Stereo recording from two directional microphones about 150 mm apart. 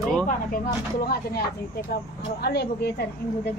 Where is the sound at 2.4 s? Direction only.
90° left.